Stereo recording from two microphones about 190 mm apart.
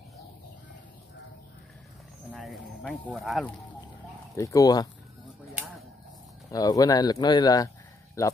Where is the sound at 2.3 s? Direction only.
Centre (ahead or behind).